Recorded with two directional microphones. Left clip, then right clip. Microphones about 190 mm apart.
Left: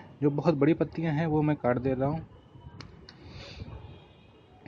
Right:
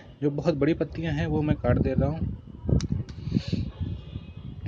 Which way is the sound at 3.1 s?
Centre (ahead or behind).